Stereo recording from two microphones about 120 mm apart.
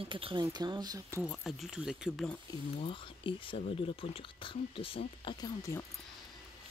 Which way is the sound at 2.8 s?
45° left (ahead or behind).